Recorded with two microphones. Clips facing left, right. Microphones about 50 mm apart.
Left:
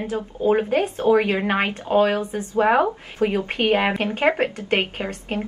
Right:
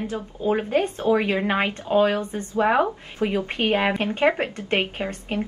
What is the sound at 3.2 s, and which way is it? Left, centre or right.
Speech, centre.